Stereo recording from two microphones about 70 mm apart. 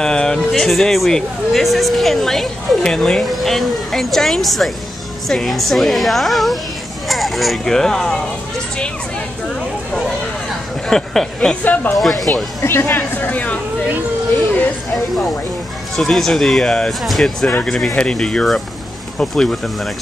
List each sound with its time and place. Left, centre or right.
0.0 s speech: centre
10.9 s speech: centre
11.6 s speech: left
12.0 s speech: centre
12.6 s speech: left
15.0 s speech: centre